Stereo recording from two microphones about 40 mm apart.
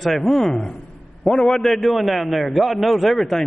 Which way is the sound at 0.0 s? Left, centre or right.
Centre.